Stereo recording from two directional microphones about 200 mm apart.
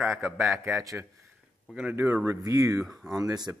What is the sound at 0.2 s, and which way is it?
Speech, 10° right (ahead or behind).